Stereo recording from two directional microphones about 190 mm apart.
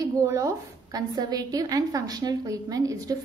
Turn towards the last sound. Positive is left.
turn(degrees=-20)  # may be behind; listen again after turning